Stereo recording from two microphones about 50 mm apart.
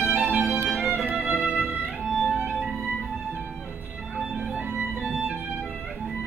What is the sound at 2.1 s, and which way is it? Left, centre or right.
Music, centre.